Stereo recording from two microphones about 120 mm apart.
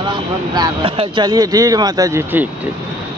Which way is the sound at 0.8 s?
50° right (ahead or behind).